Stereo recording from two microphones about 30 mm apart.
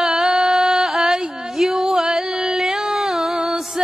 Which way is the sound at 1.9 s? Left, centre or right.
Centre.